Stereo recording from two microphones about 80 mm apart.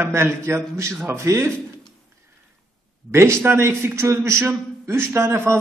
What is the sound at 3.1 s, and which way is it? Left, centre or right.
A man's voice, right.